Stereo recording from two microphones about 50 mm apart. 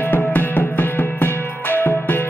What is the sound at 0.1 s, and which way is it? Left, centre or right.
Music, left.